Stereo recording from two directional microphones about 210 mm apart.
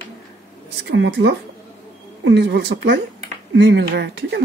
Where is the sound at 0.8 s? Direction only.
55° right (ahead or behind).